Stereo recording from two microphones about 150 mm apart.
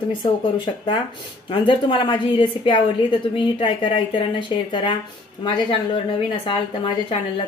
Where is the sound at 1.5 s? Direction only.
35° left (ahead or behind).